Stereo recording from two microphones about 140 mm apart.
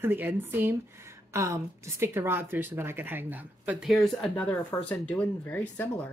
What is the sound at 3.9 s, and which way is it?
Speech, centre (ahead or behind).